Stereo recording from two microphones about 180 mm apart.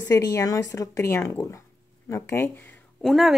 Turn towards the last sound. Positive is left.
turn(degrees=10)  # may be behind; listen again after turning